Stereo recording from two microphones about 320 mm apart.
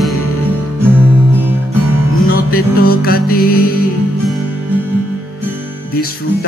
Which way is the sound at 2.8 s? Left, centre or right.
Left.